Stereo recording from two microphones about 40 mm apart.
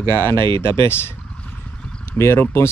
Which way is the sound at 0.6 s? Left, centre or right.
Left.